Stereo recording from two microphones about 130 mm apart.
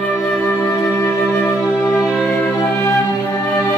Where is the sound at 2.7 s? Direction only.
20° left (ahead or behind).